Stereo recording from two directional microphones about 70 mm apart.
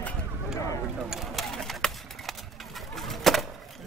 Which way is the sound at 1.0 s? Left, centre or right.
Centre.